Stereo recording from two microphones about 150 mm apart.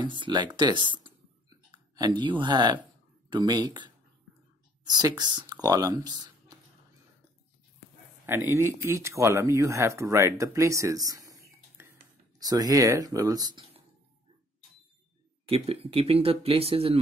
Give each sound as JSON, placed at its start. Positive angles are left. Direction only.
{"t": 0.0, "sound": "speech", "side_deg": -30}
{"t": 0.6, "sound": "a sound", "side_deg": -30}
{"t": 3.3, "sound": "speech", "side_deg": -30}
{"t": 8.3, "sound": "speech", "side_deg": -15}
{"t": 15.4, "sound": "speech", "side_deg": -40}